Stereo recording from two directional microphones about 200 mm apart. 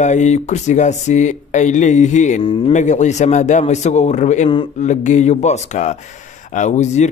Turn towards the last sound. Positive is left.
turn(degrees=35)  # may be behind; listen again after turning